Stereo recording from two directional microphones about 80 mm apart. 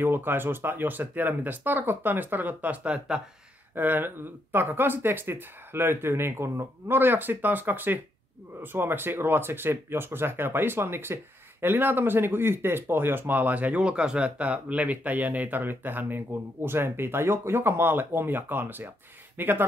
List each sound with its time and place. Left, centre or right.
0.0 s speech: right